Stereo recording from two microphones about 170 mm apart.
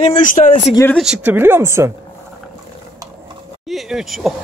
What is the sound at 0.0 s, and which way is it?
Speech, 45° left (ahead or behind).